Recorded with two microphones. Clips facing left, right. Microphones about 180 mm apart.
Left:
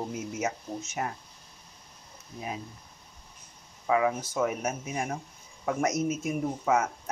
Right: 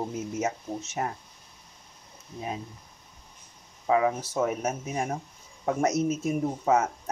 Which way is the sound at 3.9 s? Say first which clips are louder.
Right 2 dB; 30° right (ahead or behind).